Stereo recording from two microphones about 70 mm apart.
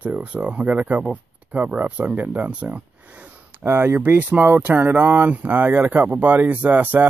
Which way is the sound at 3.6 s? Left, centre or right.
Right.